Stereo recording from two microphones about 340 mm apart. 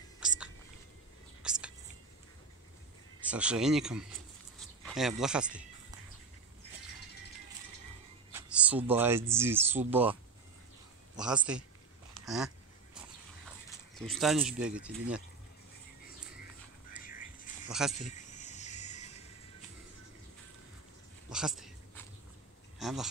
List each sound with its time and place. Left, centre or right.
0.2 s whispering: centre
1.4 s a sound: centre
3.3 s speech: centre
4.6 s a sound: centre
8.3 s speech: centre
11.1 s speech: centre
12.1 s dog: centre
13.7 s speech: centre
17.0 s a sound: left
17.6 s speech: centre
18.0 s music: left
21.3 s a sound: centre
22.8 s speech: centre